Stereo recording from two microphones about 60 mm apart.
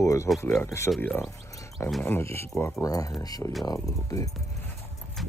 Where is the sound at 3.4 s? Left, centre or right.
Left.